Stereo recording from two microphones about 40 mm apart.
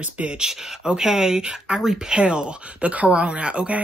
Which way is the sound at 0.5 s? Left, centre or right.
Centre.